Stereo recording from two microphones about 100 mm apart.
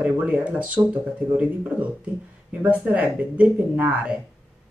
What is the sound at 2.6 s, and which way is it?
Speech, 15° right (ahead or behind).